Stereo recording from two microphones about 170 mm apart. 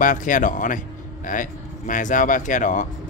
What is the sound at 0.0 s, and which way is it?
Speech, 50° left (ahead or behind).